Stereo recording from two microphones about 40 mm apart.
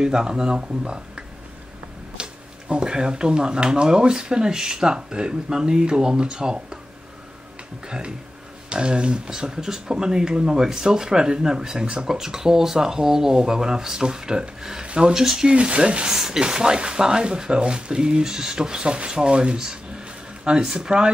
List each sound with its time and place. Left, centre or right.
0.0 s speech: centre
2.2 s a sound: right
2.7 s speech: centre
8.6 s speech: right
15.1 s speech: centre
15.5 s speech: right
16.1 s speech: centre